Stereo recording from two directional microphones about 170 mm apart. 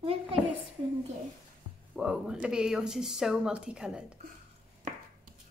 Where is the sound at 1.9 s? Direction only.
5° right (ahead or behind).